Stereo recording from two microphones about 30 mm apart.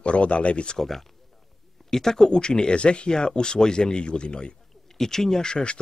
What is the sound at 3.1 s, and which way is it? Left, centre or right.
Speech, left.